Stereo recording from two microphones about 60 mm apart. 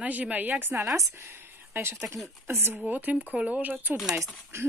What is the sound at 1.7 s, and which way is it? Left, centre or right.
Speech, right.